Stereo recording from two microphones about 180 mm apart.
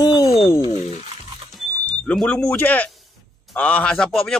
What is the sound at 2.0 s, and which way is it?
A man's voice, 5° left (ahead or behind).